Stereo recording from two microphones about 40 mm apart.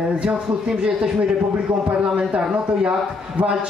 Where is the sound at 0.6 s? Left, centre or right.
Right.